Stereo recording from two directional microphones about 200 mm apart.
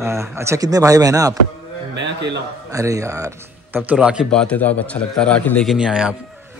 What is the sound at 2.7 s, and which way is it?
Speech, 15° right (ahead or behind).